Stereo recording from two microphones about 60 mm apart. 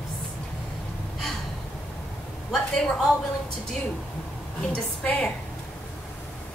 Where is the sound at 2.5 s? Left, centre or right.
Centre.